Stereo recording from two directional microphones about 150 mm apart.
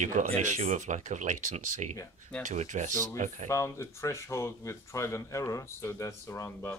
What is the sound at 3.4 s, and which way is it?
A man's voice, 20° left (ahead or behind).